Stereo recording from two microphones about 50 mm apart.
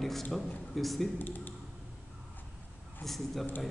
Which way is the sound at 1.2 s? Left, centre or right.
Left.